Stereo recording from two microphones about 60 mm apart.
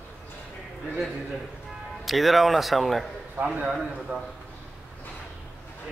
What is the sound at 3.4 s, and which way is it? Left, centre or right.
Speech, right.